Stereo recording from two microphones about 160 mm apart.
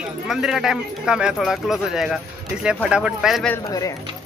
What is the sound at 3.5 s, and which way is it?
Speech, 20° left (ahead or behind).